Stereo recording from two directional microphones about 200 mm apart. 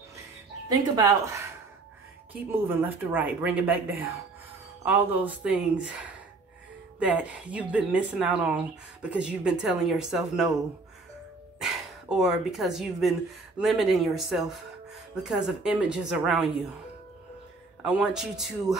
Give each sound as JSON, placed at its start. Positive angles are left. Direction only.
{"t": 0.7, "sound": "speech", "side_deg": -20}
{"t": 4.8, "sound": "speech", "side_deg": -10}
{"t": 7.1, "sound": "speech", "side_deg": -5}
{"t": 11.6, "sound": "speech", "side_deg": 0}
{"t": 17.8, "sound": "speech", "side_deg": -5}